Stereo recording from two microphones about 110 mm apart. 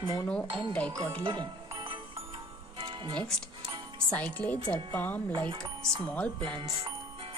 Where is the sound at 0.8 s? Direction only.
45° right (ahead or behind).